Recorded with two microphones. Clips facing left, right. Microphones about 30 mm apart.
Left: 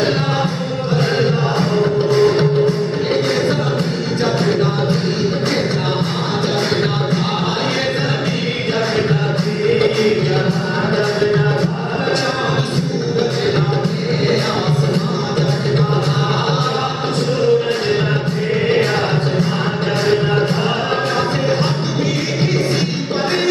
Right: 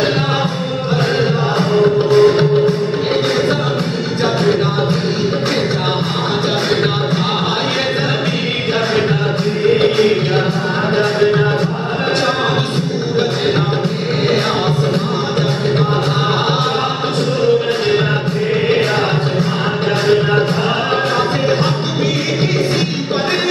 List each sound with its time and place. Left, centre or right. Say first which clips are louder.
1.8 s music: right 4 dB; centre
9.7 s music: right 2 dB; centre